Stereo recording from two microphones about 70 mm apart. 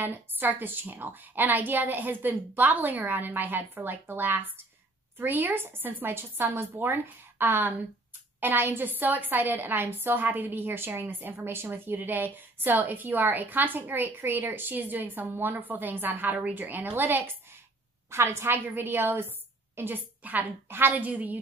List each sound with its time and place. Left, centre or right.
0.0 s a woman's voice: right